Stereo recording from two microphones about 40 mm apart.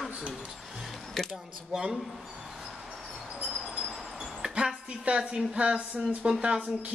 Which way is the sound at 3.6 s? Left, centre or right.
Centre.